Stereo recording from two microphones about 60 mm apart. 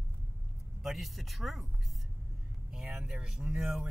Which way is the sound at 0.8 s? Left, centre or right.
Centre.